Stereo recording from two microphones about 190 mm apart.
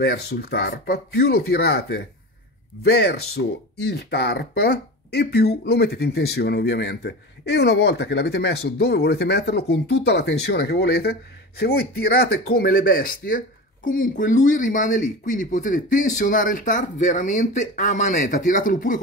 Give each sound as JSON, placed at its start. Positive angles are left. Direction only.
{"t": 0.0, "sound": "speech", "side_deg": 55}